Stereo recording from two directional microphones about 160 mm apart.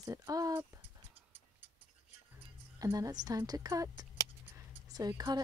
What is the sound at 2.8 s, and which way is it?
Speech, 20° right (ahead or behind).